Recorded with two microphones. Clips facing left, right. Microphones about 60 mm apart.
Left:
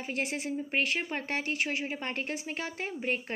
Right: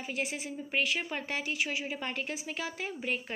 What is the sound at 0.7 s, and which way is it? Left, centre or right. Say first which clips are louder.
A woman's voice: right 1 dB; left.